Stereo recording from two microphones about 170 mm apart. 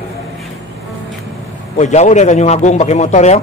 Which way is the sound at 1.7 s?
45° left (ahead or behind).